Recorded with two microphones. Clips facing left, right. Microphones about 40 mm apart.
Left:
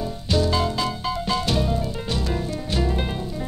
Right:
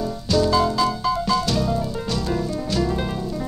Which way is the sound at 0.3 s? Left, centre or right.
Centre.